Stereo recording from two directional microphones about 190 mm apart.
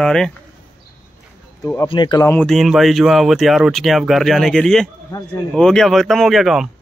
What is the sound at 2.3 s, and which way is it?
Speech, centre (ahead or behind).